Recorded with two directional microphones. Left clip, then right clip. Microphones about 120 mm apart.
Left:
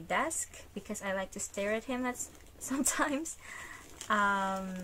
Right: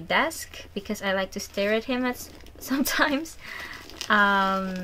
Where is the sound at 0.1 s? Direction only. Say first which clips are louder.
Right 8 dB; 25° right (ahead or behind).